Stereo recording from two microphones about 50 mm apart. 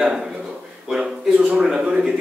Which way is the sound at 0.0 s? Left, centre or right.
Centre.